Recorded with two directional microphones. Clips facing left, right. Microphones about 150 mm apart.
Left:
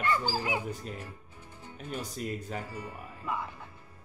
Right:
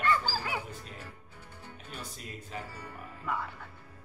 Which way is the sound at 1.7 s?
45° left (ahead or behind).